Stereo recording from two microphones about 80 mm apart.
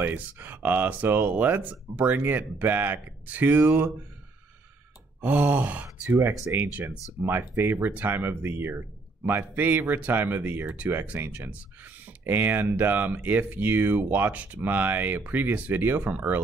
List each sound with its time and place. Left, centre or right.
0.0 s speech: right
5.2 s speech: right